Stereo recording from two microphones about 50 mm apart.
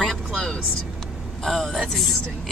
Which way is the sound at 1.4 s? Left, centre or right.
Centre.